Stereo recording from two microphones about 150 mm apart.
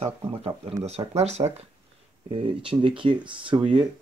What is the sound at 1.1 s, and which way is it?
Speech, 45° right (ahead or behind).